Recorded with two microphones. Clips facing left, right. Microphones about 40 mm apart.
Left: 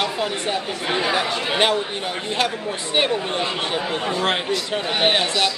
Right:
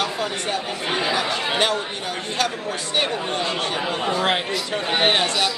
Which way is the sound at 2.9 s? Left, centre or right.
Centre.